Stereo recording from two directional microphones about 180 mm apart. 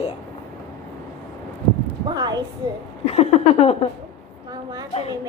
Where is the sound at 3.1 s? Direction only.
35° left (ahead or behind).